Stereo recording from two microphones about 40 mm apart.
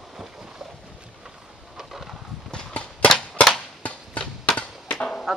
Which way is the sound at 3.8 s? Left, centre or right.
Left.